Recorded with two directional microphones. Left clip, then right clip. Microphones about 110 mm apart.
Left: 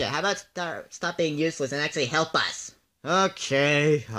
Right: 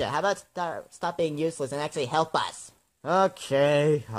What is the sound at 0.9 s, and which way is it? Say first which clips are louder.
Speech: left 2 dB; 35° right (ahead or behind).